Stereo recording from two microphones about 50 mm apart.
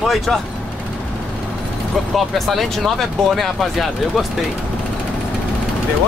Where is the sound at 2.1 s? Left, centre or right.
Centre.